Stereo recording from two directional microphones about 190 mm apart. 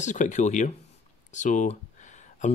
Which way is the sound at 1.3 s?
40° left (ahead or behind).